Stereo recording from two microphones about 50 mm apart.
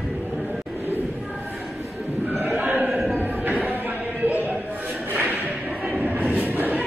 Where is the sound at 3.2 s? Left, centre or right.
Right.